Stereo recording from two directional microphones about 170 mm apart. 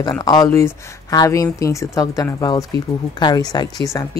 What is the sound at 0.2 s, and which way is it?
A woman's voice, 25° left (ahead or behind).